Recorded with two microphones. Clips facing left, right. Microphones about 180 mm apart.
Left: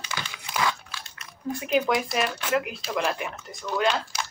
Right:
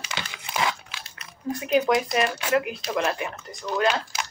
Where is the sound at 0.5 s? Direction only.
20° right (ahead or behind).